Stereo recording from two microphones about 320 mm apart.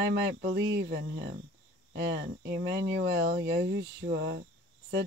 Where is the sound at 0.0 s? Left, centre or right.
Right.